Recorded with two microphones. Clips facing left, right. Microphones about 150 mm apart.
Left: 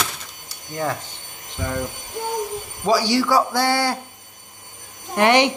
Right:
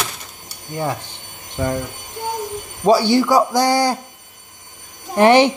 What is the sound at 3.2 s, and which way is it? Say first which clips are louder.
Speech: right 4 dB; 15° right (ahead or behind).